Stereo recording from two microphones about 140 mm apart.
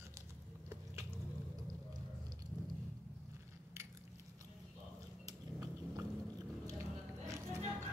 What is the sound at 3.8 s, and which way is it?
Biting, 20° right (ahead or behind).